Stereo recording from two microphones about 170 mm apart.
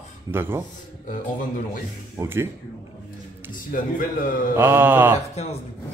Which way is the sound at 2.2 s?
15° right (ahead or behind).